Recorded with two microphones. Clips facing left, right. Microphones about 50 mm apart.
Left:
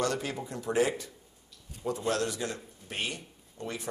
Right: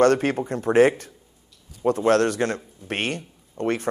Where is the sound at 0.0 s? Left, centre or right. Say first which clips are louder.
Right 13 dB; right.